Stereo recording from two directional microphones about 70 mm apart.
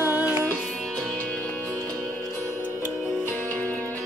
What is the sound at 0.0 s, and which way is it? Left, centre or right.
Music, right.